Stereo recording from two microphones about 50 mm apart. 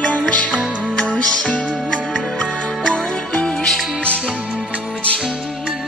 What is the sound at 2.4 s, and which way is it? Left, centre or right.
Music, centre.